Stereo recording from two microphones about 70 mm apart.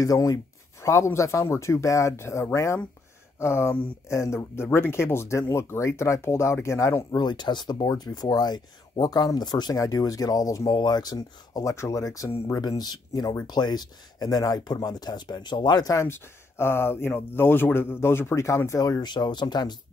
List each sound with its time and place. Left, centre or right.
0.0 s speech: left
7.2 s speech: left
9.8 s speech: left
10.7 s speech: left
11.7 s speech: left
12.5 s speech: left
16.1 s speech: left
18.7 s speech: left